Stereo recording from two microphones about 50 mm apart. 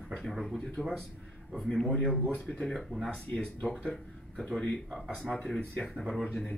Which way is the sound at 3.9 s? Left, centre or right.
Centre.